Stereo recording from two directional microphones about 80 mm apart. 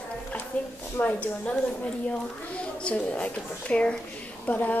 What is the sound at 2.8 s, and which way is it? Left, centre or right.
A woman's voice, centre.